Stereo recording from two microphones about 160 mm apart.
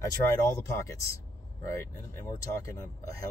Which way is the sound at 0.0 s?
20° left (ahead or behind).